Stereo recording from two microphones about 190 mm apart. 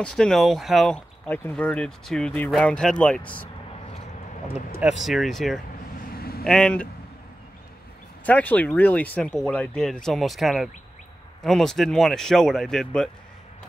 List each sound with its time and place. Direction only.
0.0 s speech: 5° left (ahead or behind)
4.7 s speech: 5° right (ahead or behind)
6.1 s vehicle: 55° left (ahead or behind)
6.4 s speech: 5° left (ahead or behind)
8.3 s speech: 10° left (ahead or behind)